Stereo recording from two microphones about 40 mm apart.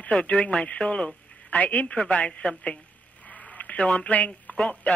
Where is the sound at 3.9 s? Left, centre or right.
Left.